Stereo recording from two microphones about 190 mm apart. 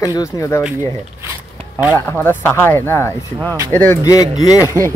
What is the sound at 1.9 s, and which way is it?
Speech, 10° left (ahead or behind).